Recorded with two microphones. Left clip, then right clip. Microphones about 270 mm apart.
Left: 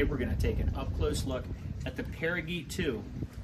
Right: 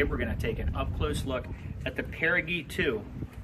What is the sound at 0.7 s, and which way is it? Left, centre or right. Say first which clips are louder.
Speech: right 2 dB; centre.